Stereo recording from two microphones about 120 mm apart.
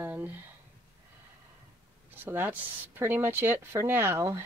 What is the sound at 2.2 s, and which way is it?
Speech, 15° right (ahead or behind).